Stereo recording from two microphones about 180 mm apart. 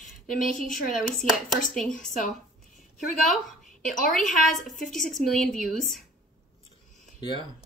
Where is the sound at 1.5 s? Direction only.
Centre (ahead or behind).